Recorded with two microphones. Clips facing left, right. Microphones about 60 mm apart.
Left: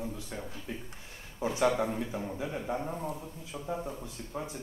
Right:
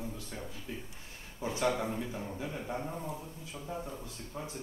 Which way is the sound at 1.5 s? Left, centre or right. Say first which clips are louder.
Left 3 dB; left.